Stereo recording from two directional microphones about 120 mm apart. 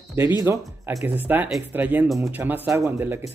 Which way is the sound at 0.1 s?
25° right (ahead or behind).